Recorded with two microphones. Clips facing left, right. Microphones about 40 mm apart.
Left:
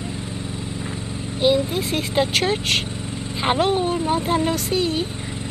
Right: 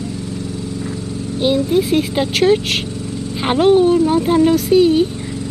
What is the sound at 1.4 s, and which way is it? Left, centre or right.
Speech, centre.